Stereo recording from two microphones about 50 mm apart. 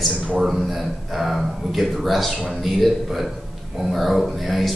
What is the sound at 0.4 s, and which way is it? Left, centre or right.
Speech, centre.